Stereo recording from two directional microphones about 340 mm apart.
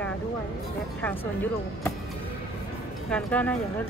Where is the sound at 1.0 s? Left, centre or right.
Centre.